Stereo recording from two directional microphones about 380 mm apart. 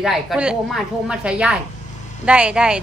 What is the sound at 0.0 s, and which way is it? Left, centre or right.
Speech, centre.